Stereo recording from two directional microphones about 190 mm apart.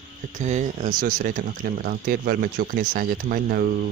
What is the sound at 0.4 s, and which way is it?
Speech, 40° right (ahead or behind).